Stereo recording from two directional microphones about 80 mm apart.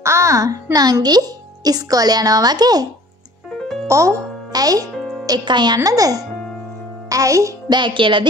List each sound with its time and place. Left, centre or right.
0.0 s a child's voice: right
0.7 s speech: right
3.5 s music: centre
3.8 s music: right
4.9 s music: centre
5.4 s a woman's voice: right
5.8 s a child's voice: right
7.7 s music: right